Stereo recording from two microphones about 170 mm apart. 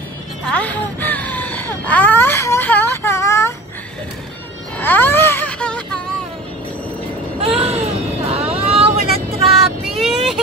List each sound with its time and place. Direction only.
0.5 s wail: 10° left (ahead or behind)
4.7 s wail: 10° left (ahead or behind)
7.3 s a sound: 35° right (ahead or behind)
9.3 s child singing: centre (ahead or behind)